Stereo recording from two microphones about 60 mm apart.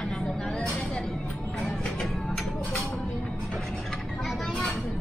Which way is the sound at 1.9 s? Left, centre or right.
Centre.